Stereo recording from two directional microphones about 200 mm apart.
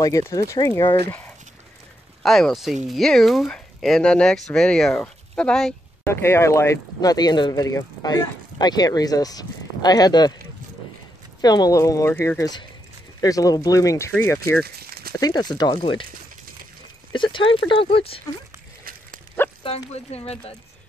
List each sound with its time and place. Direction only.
0.0 s speech: 15° left (ahead or behind)
2.2 s speech: centre (ahead or behind); by 10.3 s 20° left (ahead or behind)
11.4 s speech: 20° left (ahead or behind)
14.6 s a sound: 50° right (ahead or behind)
15.1 s speech: 20° left (ahead or behind)
17.1 s speech: 25° left (ahead or behind)
19.6 s speech: 30° left (ahead or behind)